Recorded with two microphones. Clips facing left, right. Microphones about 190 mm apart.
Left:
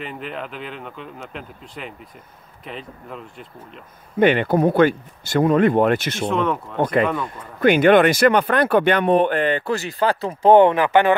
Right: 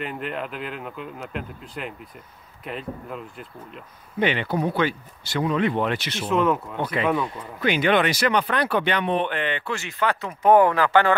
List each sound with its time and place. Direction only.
0.0 s speech: centre (ahead or behind)
4.2 s speech: 50° left (ahead or behind)
6.2 s speech: 5° right (ahead or behind)
6.8 s speech: 50° left (ahead or behind); by 11.1 s 20° left (ahead or behind)